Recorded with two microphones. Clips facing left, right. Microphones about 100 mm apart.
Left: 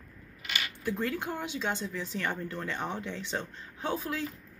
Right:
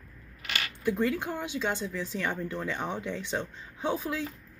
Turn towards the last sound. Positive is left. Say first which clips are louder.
# right 2 dB
turn(degrees=-10)  # may be behind; listen again after turning